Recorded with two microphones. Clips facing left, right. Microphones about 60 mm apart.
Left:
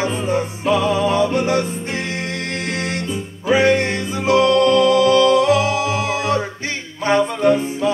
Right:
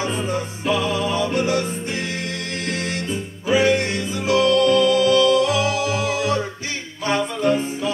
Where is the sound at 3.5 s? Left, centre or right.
Left.